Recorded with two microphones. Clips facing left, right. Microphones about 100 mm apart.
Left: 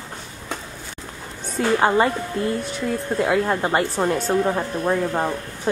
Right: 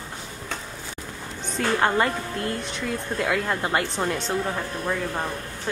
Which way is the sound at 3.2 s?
20° left (ahead or behind).